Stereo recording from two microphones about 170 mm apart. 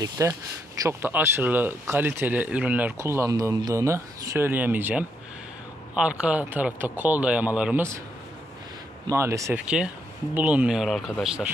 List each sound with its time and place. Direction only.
0.2 s speech: 15° right (ahead or behind)
9.0 s speech: 15° right (ahead or behind)